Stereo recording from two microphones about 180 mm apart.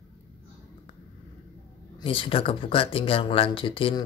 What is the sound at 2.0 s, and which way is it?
Speech, 30° left (ahead or behind).